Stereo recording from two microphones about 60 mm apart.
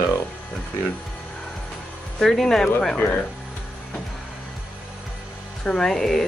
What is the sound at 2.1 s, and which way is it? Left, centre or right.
Speech, centre.